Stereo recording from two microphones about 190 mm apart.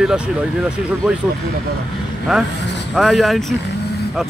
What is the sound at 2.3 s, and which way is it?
Speech, centre (ahead or behind).